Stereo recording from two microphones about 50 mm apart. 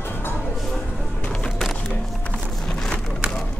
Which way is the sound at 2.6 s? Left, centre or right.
Centre.